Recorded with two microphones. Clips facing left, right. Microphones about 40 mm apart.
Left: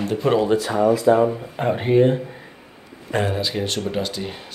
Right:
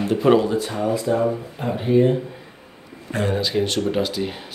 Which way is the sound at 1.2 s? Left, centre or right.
Left.